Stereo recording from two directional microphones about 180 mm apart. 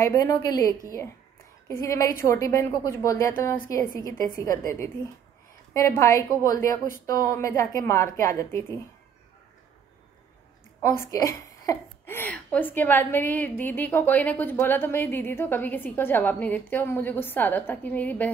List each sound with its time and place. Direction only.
0.0 s a woman's voice: 20° left (ahead or behind)
10.8 s a woman's voice: 20° left (ahead or behind)